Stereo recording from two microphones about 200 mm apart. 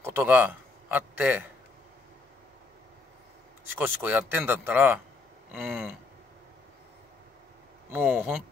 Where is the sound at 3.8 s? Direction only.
10° right (ahead or behind).